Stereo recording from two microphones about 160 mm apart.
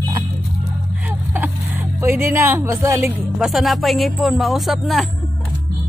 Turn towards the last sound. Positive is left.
turn(degrees=0)  # may be behind; listen again after turning